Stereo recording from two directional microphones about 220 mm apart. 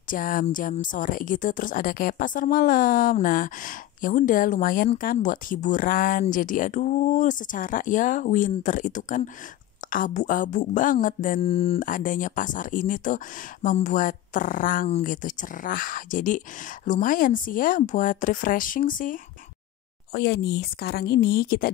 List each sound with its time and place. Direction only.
0.1 s speech: 40° left (ahead or behind)
11.8 s speech: 35° left (ahead or behind)